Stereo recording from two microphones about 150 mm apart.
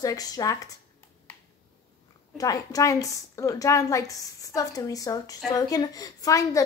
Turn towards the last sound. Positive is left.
turn(degrees=20)  # may be behind; listen again after turning